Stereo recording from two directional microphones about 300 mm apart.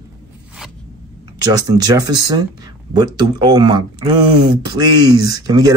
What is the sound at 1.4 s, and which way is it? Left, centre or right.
Speech, centre.